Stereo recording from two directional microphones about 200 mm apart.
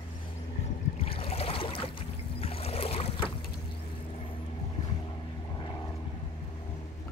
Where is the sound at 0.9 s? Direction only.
30° left (ahead or behind).